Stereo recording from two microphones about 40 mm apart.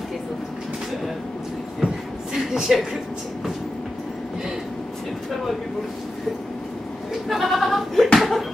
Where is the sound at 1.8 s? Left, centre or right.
Centre.